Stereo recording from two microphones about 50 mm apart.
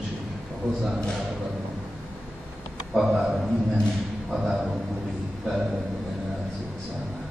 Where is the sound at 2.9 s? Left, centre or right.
Centre.